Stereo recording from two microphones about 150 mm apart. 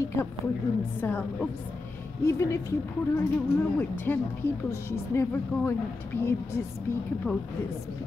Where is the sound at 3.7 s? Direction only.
10° left (ahead or behind).